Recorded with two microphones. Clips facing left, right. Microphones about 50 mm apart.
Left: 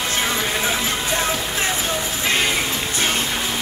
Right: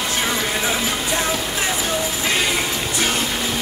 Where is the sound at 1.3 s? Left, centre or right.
Centre.